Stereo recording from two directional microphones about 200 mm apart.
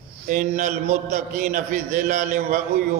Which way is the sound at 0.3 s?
45° right (ahead or behind).